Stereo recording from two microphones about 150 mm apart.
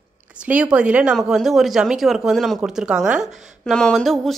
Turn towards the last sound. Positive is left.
turn(degrees=0)  # may be behind; listen again after turning